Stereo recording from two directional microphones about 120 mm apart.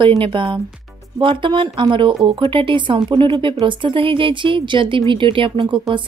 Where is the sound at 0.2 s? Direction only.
45° right (ahead or behind).